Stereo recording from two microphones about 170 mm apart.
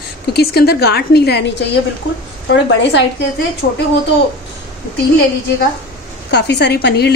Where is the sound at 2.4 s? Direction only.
90° left.